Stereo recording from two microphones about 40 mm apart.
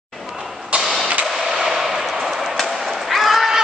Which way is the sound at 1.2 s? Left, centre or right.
Centre.